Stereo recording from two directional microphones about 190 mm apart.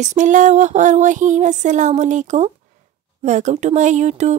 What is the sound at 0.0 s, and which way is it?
Speech, 40° right (ahead or behind).